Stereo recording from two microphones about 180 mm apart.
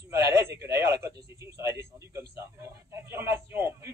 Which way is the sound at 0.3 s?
15° right (ahead or behind).